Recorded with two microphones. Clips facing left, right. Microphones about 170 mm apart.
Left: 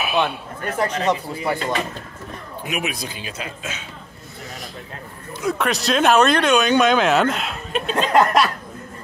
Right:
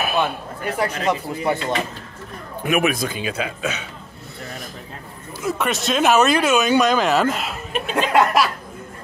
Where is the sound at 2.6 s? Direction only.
55° right (ahead or behind).